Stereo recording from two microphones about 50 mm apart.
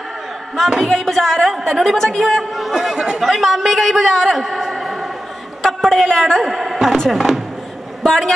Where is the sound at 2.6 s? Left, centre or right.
Centre.